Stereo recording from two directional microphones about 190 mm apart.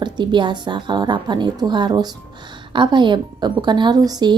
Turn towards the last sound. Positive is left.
turn(degrees=-20)  # may be behind; listen again after turning